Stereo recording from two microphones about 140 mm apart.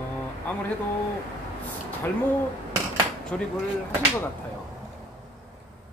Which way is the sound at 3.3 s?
10° left (ahead or behind).